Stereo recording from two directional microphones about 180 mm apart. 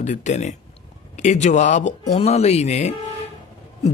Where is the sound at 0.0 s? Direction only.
40° left (ahead or behind).